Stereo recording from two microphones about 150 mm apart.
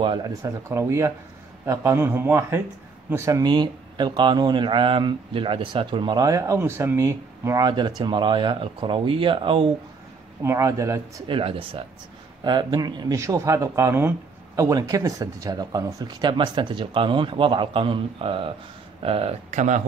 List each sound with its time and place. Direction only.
0.0 s speech: 30° right (ahead or behind)
10.4 s speech: 20° right (ahead or behind)
11.2 s speech: 35° right (ahead or behind); by 19.8 s 55° right (ahead or behind)